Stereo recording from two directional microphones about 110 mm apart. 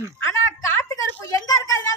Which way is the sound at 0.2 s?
25° left (ahead or behind).